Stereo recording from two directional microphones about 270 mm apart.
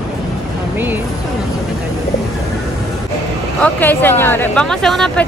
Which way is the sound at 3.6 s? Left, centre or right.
Centre.